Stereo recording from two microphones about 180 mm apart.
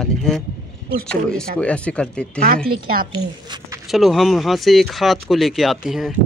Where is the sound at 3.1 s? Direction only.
25° right (ahead or behind).